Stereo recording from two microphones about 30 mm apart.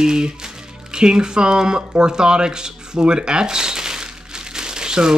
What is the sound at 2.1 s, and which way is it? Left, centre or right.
Speech, right.